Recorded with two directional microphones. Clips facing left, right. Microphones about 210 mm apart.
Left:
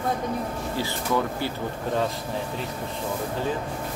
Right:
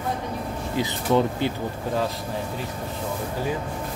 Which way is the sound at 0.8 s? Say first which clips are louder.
Right 5 dB; 20° right (ahead or behind).